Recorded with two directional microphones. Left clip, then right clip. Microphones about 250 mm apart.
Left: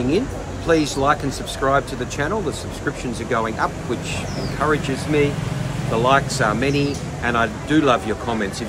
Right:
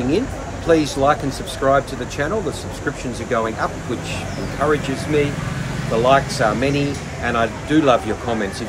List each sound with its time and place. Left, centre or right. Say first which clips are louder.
0.7 s speech: right 2 dB; centre